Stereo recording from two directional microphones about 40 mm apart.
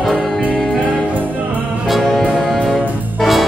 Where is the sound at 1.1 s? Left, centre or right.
Right.